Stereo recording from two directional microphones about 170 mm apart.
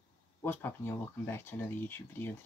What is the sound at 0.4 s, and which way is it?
Speech, 15° left (ahead or behind).